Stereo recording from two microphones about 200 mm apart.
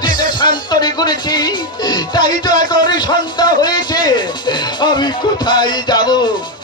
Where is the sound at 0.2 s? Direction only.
20° left (ahead or behind).